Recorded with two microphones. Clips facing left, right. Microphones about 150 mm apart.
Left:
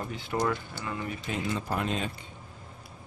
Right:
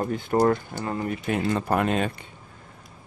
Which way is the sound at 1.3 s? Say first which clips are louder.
Right 8 dB; 60° right (ahead or behind).